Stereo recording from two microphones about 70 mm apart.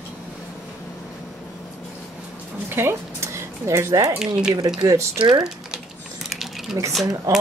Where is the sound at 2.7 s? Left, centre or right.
Right.